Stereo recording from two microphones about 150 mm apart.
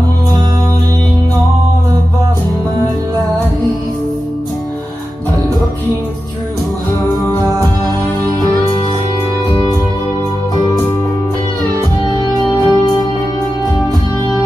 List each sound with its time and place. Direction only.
12.4 s music: 25° left (ahead or behind)